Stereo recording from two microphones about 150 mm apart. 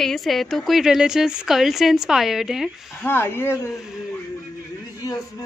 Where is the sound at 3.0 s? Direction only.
15° left (ahead or behind).